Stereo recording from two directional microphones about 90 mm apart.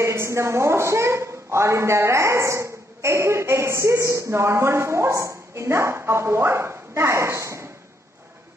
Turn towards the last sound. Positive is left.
turn(degrees=-35)  # may be behind; listen again after turning